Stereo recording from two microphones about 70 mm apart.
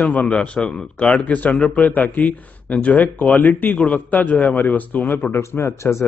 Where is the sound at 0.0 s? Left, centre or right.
Left.